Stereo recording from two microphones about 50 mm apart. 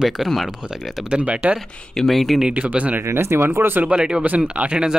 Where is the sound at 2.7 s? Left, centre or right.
Right.